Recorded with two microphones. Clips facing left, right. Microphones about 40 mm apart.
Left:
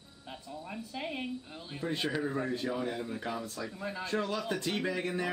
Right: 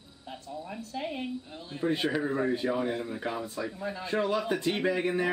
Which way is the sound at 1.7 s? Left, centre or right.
Centre.